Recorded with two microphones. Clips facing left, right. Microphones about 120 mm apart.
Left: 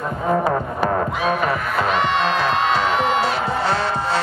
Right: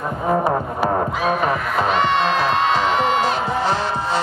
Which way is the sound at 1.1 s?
Centre (ahead or behind).